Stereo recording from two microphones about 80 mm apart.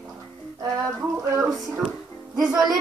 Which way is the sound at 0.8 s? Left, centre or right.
Right.